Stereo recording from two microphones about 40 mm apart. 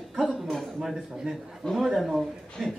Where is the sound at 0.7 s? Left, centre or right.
Centre.